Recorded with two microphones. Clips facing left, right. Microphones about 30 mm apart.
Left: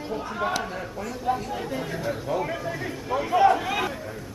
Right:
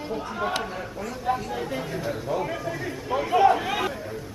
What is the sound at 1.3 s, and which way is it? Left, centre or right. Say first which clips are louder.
Speech: even; centre.